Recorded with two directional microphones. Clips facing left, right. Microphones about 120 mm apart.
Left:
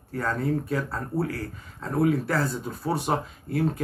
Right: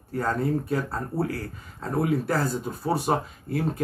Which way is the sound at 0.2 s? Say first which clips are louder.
Right 1 dB; 35° right (ahead or behind).